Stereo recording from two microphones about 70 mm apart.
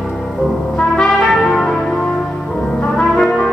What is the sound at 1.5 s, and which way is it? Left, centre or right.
Church bell, centre.